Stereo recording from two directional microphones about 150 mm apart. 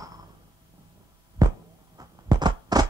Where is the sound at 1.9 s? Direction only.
25° right (ahead or behind).